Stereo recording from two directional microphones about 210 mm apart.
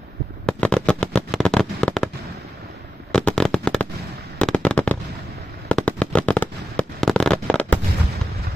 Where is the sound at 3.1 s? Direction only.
5° left (ahead or behind).